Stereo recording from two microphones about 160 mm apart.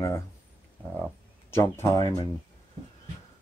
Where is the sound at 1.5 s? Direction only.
15° left (ahead or behind).